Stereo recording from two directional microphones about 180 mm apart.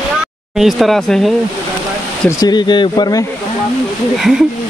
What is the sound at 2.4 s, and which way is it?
Speech, 25° left (ahead or behind).